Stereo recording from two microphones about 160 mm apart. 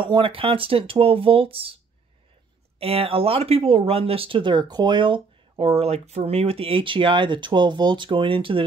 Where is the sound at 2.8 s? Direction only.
35° right (ahead or behind).